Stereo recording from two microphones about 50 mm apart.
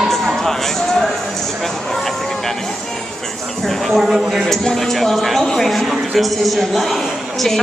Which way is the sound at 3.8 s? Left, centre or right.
Centre.